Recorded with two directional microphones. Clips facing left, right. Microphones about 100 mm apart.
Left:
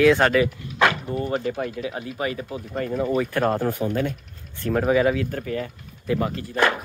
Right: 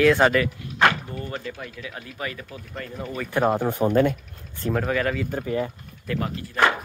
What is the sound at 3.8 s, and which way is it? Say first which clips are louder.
Speech: right 5 dB; 50° right (ahead or behind).